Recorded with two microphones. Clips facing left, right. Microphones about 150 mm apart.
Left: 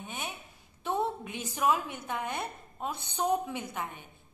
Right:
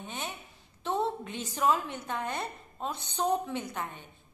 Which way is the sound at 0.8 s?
10° left (ahead or behind).